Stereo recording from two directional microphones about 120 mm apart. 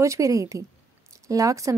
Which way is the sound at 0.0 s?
25° right (ahead or behind).